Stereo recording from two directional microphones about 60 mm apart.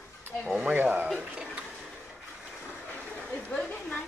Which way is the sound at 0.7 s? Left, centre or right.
Right.